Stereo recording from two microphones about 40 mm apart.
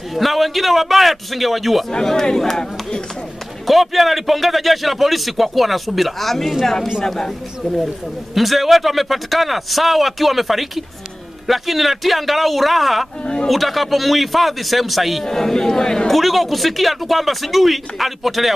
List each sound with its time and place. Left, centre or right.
0.1 s a man's voice: centre
1.9 s speech: centre
3.6 s a man's voice: centre
8.4 s a man's voice: centre
15.2 s speech: centre
16.1 s a man's voice: centre